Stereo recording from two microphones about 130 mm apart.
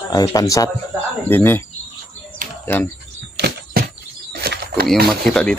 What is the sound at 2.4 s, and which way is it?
Cricket, 90° right.